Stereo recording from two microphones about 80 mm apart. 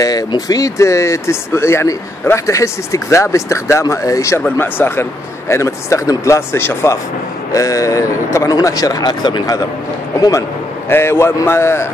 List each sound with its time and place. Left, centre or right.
0.0 s speech: left
4.6 s speech: left
7.5 s speech: left
10.1 s speech: left
10.9 s speech: left